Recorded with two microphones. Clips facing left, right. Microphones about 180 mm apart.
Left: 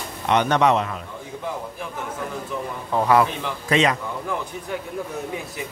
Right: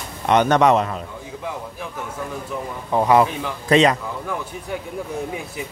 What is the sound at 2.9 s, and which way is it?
Speech, 20° right (ahead or behind).